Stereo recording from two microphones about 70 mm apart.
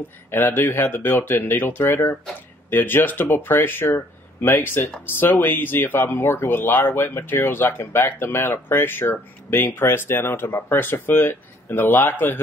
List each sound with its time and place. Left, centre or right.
0.3 s speech: left